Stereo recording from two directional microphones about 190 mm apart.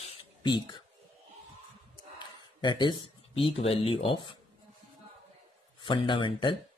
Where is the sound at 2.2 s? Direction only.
25° left (ahead or behind).